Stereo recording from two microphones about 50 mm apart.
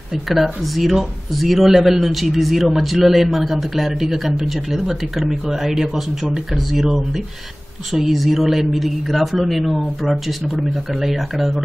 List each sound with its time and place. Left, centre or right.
0.3 s a man's voice: centre